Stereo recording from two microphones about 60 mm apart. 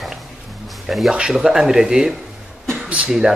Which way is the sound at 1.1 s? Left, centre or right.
Centre.